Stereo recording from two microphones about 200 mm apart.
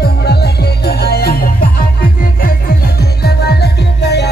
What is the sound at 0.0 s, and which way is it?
Music, 55° left (ahead or behind).